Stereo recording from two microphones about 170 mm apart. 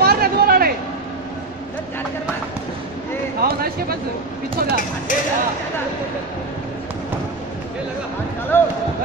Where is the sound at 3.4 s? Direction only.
60° right (ahead or behind).